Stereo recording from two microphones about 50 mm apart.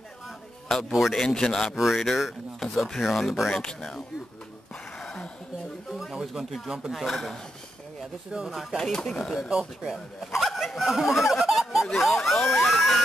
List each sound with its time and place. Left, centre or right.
0.7 s a man's voice: centre
0.9 s speech: centre
1.2 s speech: centre
1.7 s speech: centre
5.9 s a sound: centre
6.7 s speech: centre
8.5 s speech: centre
8.9 s speech: centre
9.5 s speech: centre
10.2 s speech: centre